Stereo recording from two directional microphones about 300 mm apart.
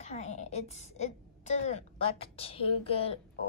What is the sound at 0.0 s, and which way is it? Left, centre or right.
A woman's voice, left.